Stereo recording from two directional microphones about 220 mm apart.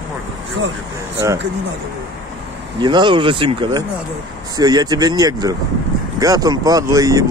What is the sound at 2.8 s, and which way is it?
Speech, 20° right (ahead or behind).